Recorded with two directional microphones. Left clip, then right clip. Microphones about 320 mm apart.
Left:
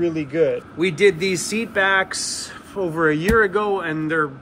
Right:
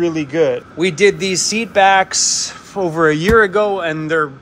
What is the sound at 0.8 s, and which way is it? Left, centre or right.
A man's voice, centre.